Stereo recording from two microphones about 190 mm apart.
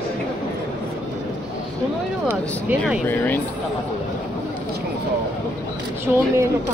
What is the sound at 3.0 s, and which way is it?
Speech, 10° left (ahead or behind).